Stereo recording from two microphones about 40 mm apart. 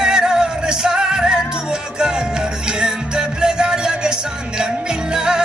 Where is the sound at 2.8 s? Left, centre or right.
Centre.